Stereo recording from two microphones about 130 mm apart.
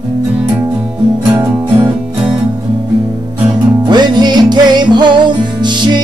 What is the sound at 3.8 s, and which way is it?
Music, 35° right (ahead or behind).